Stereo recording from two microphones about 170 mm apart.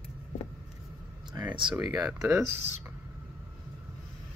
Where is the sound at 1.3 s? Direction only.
25° right (ahead or behind).